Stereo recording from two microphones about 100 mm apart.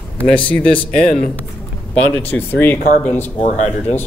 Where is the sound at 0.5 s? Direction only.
15° left (ahead or behind).